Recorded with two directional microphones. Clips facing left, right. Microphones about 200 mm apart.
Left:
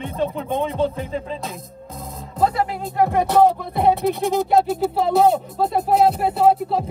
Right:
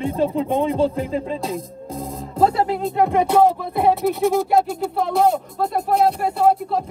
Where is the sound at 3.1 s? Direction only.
10° right (ahead or behind).